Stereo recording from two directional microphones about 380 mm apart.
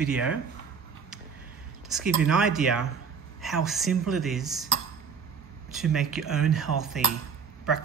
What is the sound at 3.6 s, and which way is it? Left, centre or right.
Speech, centre.